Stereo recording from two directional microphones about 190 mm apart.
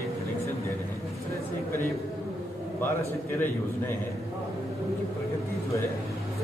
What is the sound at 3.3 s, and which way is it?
Speech, 10° left (ahead or behind).